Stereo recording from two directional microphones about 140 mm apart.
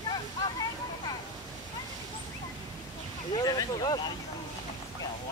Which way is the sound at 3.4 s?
30° left (ahead or behind).